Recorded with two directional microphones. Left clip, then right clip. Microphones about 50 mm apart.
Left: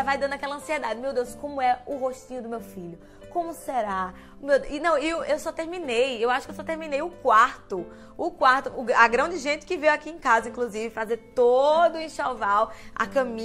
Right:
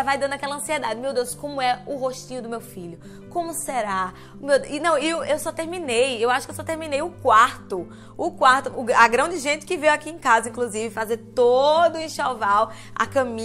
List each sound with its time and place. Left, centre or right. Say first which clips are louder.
0.0 s a woman's voice: right 3 dB; right
1.0 s a woman's voice: right 3 dB; centre
1.9 s speech: right 2 dB; centre
3.6 s a woman's voice: right 4 dB; centre
11.9 s a woman's voice: right 3 dB; right